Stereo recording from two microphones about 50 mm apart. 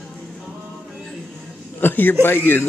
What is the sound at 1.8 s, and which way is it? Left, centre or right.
Speech, left.